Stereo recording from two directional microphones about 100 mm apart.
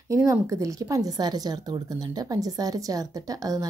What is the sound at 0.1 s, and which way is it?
Speech, 35° right (ahead or behind).